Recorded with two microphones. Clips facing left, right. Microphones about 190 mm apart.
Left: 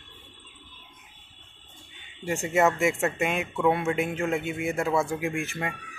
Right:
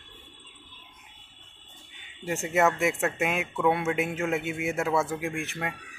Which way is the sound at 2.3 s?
Centre (ahead or behind).